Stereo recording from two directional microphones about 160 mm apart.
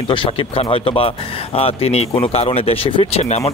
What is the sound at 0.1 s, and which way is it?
Speech, 35° left (ahead or behind).